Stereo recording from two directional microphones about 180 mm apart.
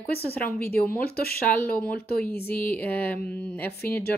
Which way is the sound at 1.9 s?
60° left (ahead or behind).